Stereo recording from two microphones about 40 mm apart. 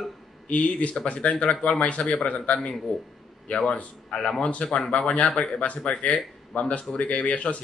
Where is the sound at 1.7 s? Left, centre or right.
Left.